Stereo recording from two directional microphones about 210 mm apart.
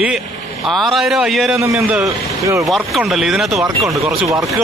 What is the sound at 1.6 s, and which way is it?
Speech, 10° right (ahead or behind).